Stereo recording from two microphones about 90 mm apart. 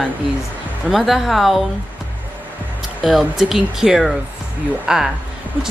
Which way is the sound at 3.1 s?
5° right (ahead or behind).